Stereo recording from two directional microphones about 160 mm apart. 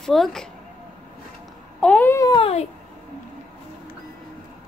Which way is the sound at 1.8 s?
10° left (ahead or behind).